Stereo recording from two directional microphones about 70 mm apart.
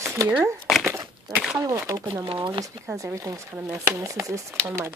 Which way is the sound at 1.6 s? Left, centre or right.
Right.